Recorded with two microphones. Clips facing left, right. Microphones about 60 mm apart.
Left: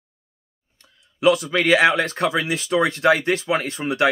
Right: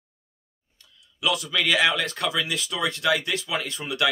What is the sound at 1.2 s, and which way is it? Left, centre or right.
Speech, left.